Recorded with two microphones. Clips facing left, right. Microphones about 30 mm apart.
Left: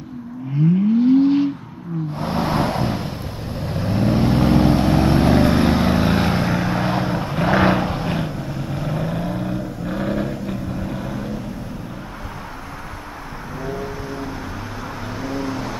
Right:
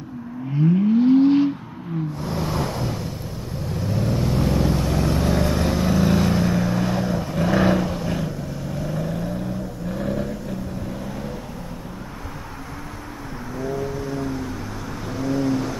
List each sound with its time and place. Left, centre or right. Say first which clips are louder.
0.7 s vehicle: left 1 dB; centre
2.1 s vehicle: left 8 dB; left
13.6 s vehicle: right 2 dB; left